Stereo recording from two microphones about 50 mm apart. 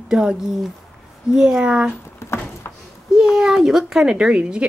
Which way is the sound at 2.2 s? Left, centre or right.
Left.